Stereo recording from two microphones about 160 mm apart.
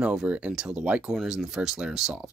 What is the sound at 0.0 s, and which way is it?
Speech, 5° right (ahead or behind).